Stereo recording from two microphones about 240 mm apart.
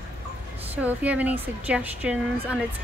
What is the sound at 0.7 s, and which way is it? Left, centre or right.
Speech, centre.